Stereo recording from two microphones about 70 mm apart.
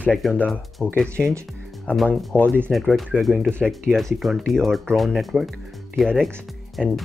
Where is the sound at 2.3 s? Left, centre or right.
Right.